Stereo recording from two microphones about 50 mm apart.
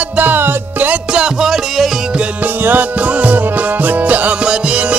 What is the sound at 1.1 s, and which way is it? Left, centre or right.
Music, centre.